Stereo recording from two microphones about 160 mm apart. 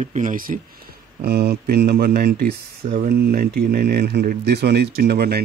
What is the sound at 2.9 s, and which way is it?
Speech, 80° right.